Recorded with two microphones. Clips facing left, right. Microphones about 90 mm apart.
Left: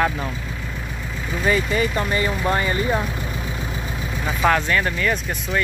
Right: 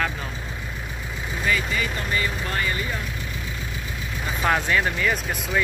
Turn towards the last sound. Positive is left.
turn(degrees=-5)  # may be behind; listen again after turning